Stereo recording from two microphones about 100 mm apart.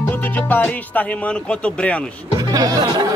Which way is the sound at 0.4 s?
20° left (ahead or behind).